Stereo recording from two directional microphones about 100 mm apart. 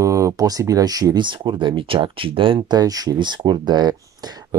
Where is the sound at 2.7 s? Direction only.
40° right (ahead or behind).